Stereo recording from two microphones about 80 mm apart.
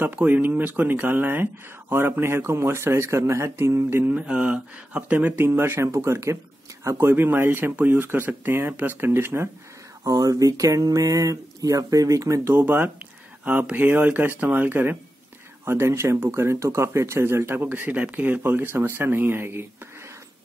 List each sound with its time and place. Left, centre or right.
0.0 s speech: right
4.0 s speech: centre
10.0 s speech: right
12.5 s speech: right